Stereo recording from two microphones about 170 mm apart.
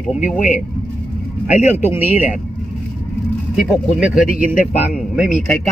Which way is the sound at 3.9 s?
5° right (ahead or behind).